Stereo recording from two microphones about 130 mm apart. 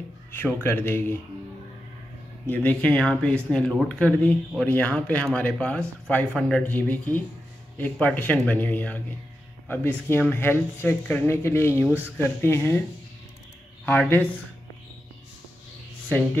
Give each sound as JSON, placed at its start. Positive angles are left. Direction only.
{"t": 0.3, "sound": "speech", "side_deg": 15}
{"t": 2.5, "sound": "speech", "side_deg": 10}
{"t": 13.8, "sound": "speech", "side_deg": 15}